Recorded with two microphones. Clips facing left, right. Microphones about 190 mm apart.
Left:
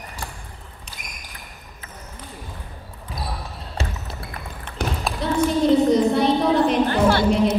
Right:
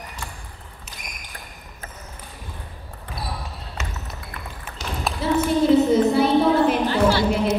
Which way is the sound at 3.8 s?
30° left (ahead or behind).